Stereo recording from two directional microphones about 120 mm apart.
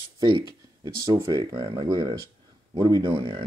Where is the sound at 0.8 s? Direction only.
30° right (ahead or behind).